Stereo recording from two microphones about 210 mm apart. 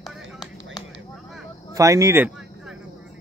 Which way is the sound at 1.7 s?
15° right (ahead or behind).